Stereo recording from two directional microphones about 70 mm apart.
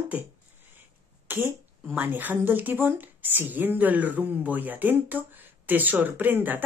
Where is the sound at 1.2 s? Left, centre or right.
Right.